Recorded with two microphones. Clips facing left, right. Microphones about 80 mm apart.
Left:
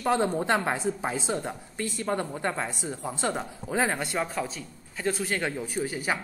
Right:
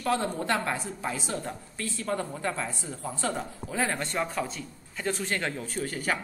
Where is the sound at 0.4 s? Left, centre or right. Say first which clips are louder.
Left 3 dB; left.